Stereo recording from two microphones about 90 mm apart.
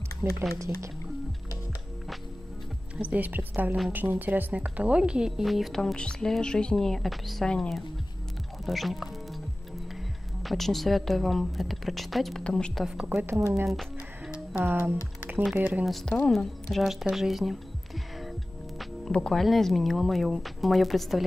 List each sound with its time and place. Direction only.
0.2 s a woman's voice: 20° right (ahead or behind)
3.0 s a woman's voice: 20° right (ahead or behind); by 7.8 s 10° left (ahead or behind)
8.6 s music: centre (ahead or behind)
10.4 s a woman's voice: centre (ahead or behind)
13.0 s a woman's voice: 25° right (ahead or behind)
13.7 s speech: centre (ahead or behind)
14.6 s a woman's voice: 25° right (ahead or behind)
15.8 s speech: 5° left (ahead or behind)